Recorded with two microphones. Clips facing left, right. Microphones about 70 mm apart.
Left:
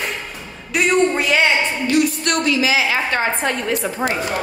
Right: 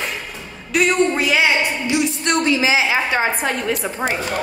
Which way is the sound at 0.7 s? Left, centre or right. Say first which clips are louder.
Even; centre.